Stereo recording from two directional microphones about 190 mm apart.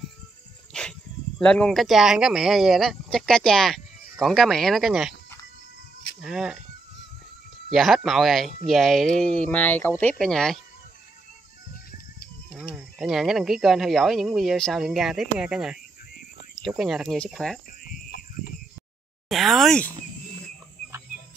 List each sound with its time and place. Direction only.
0.7 s snake: 5° left (ahead or behind)
1.4 s speech: 5° left (ahead or behind)
6.2 s speech: 5° right (ahead or behind)
7.7 s speech: centre (ahead or behind)
12.5 s speech: 5° right (ahead or behind)
17.8 s a sound: 55° left (ahead or behind)
19.2 s speech: centre (ahead or behind)